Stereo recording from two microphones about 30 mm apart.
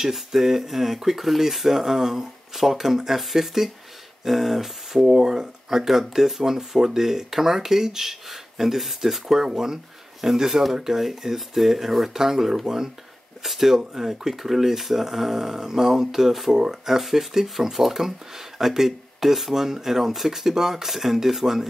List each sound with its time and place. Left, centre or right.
0.1 s speech: centre
5.3 s speech: right
5.8 s speech: centre